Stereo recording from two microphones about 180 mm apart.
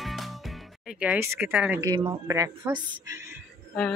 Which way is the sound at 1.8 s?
20° right (ahead or behind).